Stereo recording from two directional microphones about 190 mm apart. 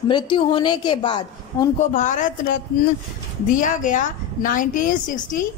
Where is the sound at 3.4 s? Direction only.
45° left (ahead or behind).